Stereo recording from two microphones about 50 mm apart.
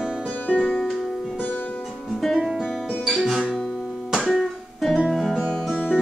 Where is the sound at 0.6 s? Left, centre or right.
Centre.